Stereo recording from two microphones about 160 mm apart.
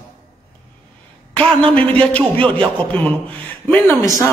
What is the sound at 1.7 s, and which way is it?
Speech, 10° left (ahead or behind).